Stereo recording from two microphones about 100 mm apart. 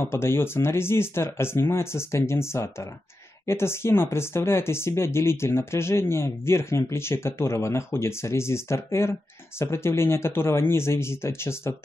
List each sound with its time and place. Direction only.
0.0 s speech: 25° left (ahead or behind)